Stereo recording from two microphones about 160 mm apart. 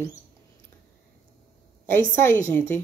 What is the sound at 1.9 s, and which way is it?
Speech, 15° left (ahead or behind).